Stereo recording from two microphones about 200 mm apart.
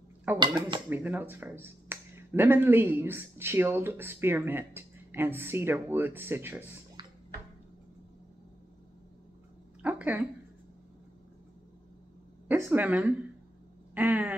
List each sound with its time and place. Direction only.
0.4 s speech: 20° right (ahead or behind)
0.8 s speech: 10° right (ahead or behind)
9.8 s a sound: 5° right (ahead or behind)
12.4 s a woman's voice: 10° right (ahead or behind)